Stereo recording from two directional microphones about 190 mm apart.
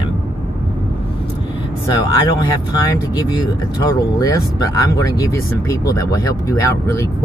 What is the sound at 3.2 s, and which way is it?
Speech, 20° left (ahead or behind).